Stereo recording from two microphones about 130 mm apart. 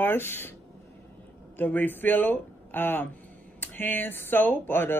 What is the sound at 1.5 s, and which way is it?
Speech, 15° left (ahead or behind).